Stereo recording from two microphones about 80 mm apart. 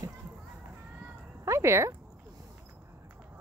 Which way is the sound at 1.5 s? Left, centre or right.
Right.